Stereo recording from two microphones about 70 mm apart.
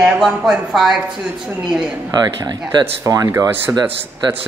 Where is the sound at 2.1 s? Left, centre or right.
Right.